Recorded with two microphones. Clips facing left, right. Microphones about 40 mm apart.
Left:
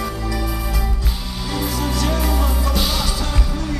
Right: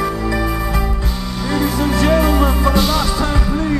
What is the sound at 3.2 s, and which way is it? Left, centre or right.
Music, right.